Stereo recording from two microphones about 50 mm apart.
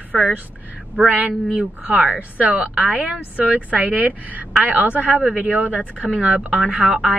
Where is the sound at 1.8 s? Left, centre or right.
Right.